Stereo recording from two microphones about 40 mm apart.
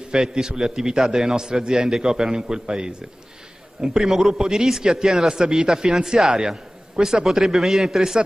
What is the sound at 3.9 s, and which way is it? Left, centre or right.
A man's voice, centre.